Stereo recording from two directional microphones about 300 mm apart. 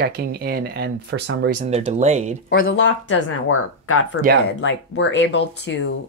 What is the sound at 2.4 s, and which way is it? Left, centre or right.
Speech, left.